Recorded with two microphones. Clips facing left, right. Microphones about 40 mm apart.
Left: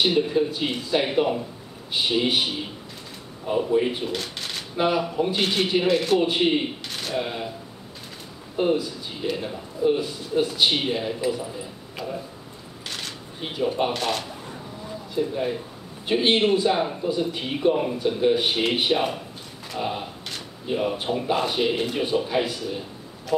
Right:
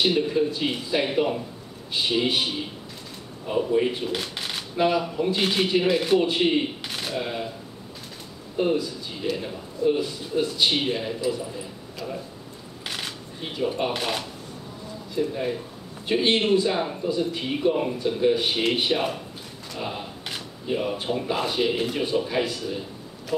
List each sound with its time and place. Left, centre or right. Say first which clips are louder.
0.0 s speech: left 1 dB; centre
3.4 s speech: left 1 dB; centre
4.1 s speech: right 1 dB; centre
4.7 s speech: even; centre
5.4 s a man's voice: right 1 dB; centre
5.9 s speech: left 1 dB; centre
6.1 s speech: even; centre
6.9 s a sound: even; centre
7.2 s speech: left 2 dB; centre
8.7 s a man's voice: even; centre
12.8 s a sound: right 2 dB; centre
13.4 s speech: left 1 dB; centre
13.9 s speech: left 1 dB; centre
15.1 s speech: left 1 dB; centre